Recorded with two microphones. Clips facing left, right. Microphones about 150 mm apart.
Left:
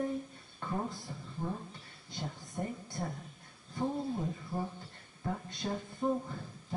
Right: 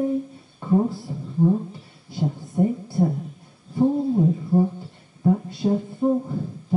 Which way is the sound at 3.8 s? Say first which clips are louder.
Right 15 dB; 30° right (ahead or behind).